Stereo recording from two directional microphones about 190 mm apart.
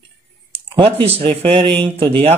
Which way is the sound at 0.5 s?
30° right (ahead or behind).